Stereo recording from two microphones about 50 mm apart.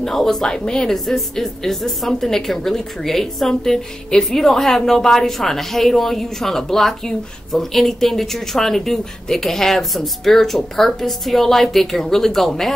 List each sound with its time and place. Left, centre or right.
0.0 s a woman's voice: centre